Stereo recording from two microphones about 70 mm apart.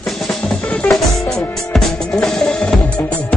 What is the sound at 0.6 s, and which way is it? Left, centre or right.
Music, centre.